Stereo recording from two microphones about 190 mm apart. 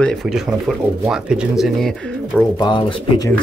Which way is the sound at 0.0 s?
Centre (ahead or behind).